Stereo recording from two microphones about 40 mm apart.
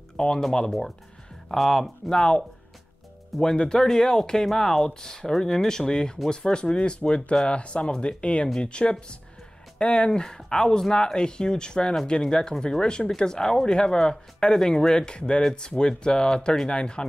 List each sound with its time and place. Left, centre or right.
0.2 s speech: centre
3.5 s speech: centre